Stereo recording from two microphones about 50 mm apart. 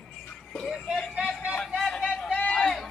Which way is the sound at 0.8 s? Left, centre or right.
Centre.